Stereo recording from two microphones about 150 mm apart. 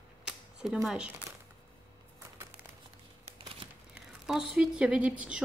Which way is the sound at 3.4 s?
35° right (ahead or behind).